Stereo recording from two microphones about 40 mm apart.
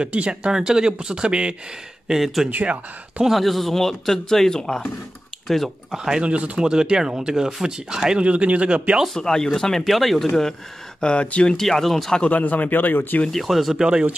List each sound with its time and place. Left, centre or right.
0.0 s speech: right
2.0 s speech: centre
2.5 s speech: right
3.3 s speech: centre
5.9 s speech: centre
6.2 s speech: right
8.2 s speech: right
9.1 s speech: centre
11.0 s speech: left
11.5 s speech: centre
12.3 s speech: left
13.3 s speech: centre
13.8 s speech: right